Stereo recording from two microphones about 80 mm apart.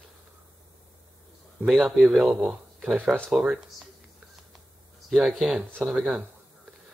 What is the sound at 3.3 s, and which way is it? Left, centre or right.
Speech, centre.